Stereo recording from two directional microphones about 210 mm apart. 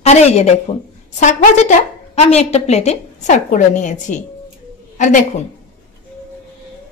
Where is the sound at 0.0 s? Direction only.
30° left (ahead or behind).